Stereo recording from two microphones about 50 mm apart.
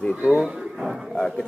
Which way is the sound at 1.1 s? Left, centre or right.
Centre.